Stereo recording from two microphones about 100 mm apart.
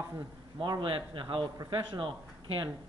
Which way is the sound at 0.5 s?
50° right (ahead or behind).